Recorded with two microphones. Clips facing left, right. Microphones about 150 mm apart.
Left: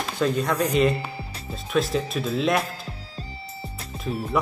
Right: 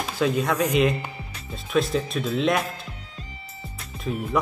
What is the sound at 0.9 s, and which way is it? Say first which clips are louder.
Music: left 2 dB; 35° left (ahead or behind).